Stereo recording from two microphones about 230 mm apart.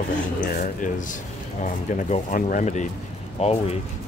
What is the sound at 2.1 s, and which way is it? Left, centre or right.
Speech, left.